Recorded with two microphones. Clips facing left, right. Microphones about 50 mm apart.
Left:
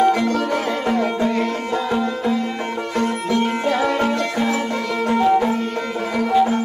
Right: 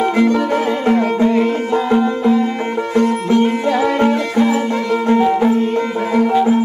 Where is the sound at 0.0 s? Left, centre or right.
Right.